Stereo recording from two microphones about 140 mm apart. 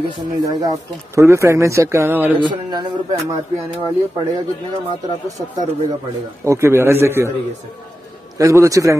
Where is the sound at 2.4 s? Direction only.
35° right (ahead or behind).